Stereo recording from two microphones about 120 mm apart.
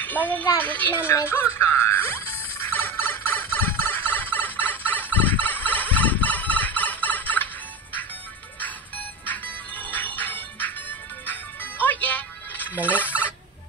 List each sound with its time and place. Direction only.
0.0 s a woman's voice: 15° left (ahead or behind)
0.6 s music: 15° left (ahead or behind)
8.5 s music: 15° left (ahead or behind)
12.8 s fowl: 15° left (ahead or behind)